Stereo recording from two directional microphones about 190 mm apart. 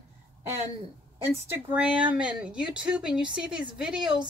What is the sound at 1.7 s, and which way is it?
A woman's voice, 5° right (ahead or behind).